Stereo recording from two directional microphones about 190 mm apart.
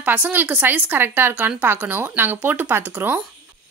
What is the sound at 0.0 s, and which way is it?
A woman's voice, 10° right (ahead or behind).